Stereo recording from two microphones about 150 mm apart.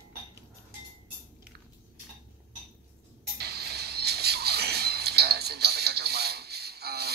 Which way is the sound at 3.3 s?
90° right.